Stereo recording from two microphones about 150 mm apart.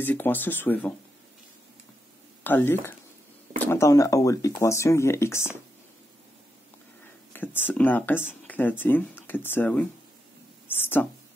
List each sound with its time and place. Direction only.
0.0 s speech: 10° left (ahead or behind)
2.4 s speech: 15° left (ahead or behind)
7.3 s speech: 10° left (ahead or behind)